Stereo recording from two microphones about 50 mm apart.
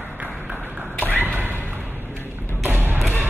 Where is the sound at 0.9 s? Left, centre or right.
Left.